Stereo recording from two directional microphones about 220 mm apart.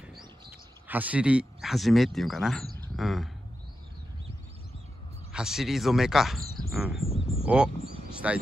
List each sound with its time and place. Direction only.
0.0 s bird: centre (ahead or behind)
0.8 s speech: 5° right (ahead or behind)
5.3 s speech: centre (ahead or behind)
7.1 s a sound: 25° left (ahead or behind)
7.4 s speech: 5° right (ahead or behind)